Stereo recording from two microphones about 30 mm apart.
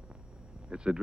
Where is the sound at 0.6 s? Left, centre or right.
Right.